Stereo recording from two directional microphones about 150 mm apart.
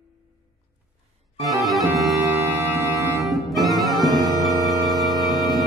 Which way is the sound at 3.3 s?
Centre (ahead or behind).